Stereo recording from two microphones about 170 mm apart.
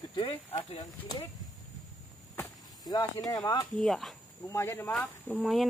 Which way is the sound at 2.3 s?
25° left (ahead or behind).